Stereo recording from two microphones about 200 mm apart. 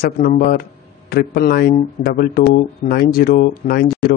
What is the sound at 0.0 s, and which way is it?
A man's voice, 45° left (ahead or behind).